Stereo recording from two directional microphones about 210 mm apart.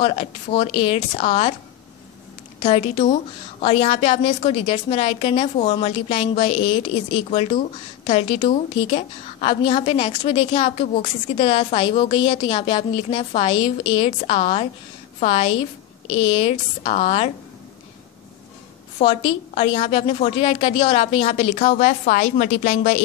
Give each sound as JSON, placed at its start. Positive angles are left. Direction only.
{"t": 0.0, "sound": "a woman's voice", "side_deg": 30}
{"t": 2.6, "sound": "a woman's voice", "side_deg": 25}
{"t": 6.9, "sound": "speech", "side_deg": 65}
{"t": 7.2, "sound": "a woman's voice", "side_deg": 30}
{"t": 18.9, "sound": "a woman's voice", "side_deg": 25}